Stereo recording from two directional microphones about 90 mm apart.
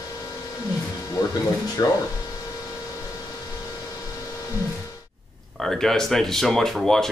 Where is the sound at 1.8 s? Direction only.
50° left (ahead or behind).